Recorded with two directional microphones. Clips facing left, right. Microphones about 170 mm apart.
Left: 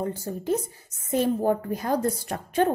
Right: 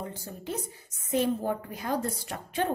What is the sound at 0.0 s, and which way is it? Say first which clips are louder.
A woman's voice: left 9 dB; 45° left (ahead or behind).